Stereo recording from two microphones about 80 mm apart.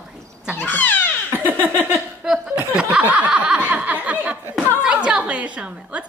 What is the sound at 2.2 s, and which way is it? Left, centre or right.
A woman's voice, centre.